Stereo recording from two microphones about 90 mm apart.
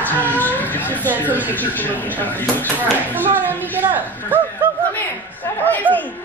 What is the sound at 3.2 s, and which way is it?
Speech, 20° right (ahead or behind).